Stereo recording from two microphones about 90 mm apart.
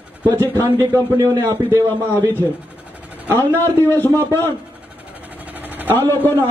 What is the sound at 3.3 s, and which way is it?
Speech, 25° right (ahead or behind).